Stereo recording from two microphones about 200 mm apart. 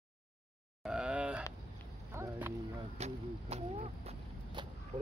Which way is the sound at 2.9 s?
35° right (ahead or behind).